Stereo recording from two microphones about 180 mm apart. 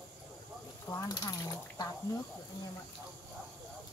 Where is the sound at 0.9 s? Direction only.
20° left (ahead or behind).